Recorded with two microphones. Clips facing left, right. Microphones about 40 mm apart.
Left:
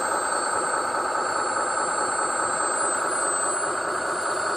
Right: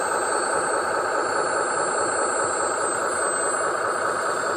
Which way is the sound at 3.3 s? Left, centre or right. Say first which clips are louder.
Right 2 dB; centre.